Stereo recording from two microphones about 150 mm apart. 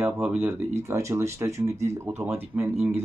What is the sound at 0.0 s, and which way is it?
Speech, 10° right (ahead or behind).